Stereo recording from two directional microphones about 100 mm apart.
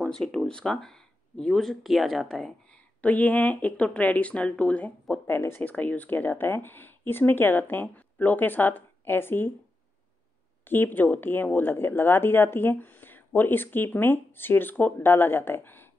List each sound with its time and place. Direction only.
0.1 s speech: 5° left (ahead or behind)
3.0 s speech: 15° left (ahead or behind)
10.6 s speech: 20° left (ahead or behind)